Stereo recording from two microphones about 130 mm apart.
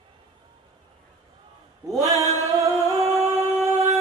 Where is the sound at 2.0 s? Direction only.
30° right (ahead or behind).